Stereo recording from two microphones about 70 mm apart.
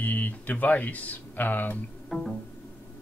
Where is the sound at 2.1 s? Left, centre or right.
Centre.